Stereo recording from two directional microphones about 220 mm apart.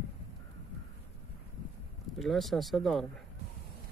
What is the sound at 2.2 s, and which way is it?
Speech, centre (ahead or behind).